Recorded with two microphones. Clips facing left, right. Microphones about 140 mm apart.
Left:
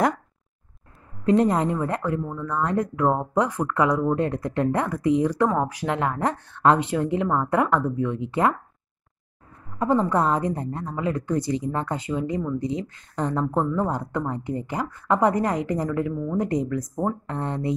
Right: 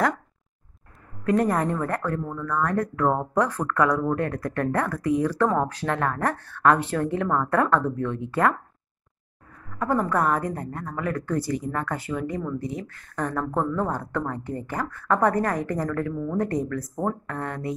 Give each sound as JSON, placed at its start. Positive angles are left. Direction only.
{"t": 1.2, "sound": "speech", "side_deg": 25}
{"t": 9.7, "sound": "a woman's voice", "side_deg": 20}